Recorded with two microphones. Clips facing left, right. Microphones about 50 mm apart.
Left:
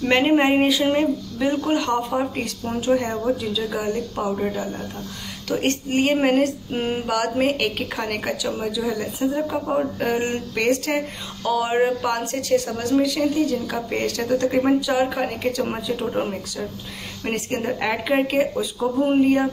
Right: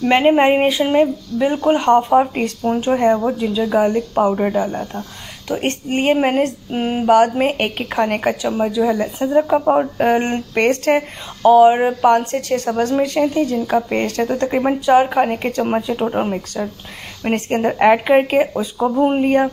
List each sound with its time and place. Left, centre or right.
0.1 s female singing: centre
0.4 s a woman's voice: right
2.8 s a woman's voice: right
4.1 s speech: right
5.5 s a woman's voice: right
6.1 s female singing: centre
7.1 s a woman's voice: right
11.4 s a woman's voice: right
12.1 s a woman's voice: right